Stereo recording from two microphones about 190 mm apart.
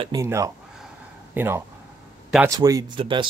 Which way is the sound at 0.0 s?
15° right (ahead or behind).